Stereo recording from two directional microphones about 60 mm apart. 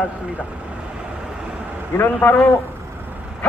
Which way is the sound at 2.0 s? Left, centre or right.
Left.